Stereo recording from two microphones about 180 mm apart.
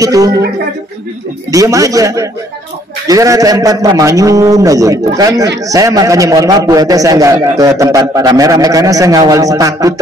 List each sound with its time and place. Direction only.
0.0 s a man's voice: 20° right (ahead or behind)
1.5 s a man's voice: 20° right (ahead or behind)